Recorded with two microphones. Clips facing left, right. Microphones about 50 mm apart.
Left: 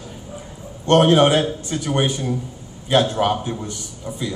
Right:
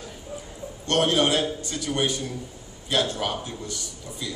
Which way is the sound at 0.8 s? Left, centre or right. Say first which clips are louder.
Left 8 dB; left.